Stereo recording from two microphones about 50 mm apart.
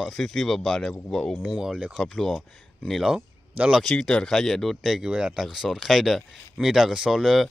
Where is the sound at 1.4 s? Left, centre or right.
Centre.